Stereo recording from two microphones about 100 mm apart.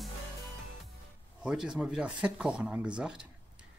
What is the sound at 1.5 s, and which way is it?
Speech, 10° right (ahead or behind).